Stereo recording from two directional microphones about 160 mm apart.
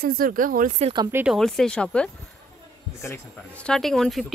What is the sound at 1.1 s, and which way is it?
Speech, 15° right (ahead or behind).